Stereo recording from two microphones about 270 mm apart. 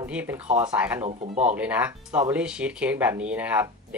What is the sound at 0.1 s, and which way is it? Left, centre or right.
Speech, centre.